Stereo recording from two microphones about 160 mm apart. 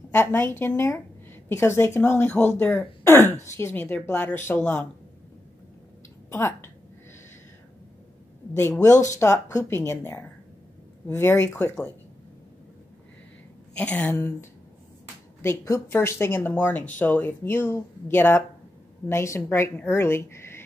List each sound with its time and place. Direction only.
0.1 s a woman's voice: 15° left (ahead or behind)
6.3 s speech: 15° left (ahead or behind)
8.5 s speech: 15° left (ahead or behind)
13.7 s speech: 10° left (ahead or behind)